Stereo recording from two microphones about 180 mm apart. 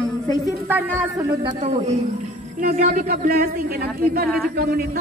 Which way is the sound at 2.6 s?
50° right (ahead or behind).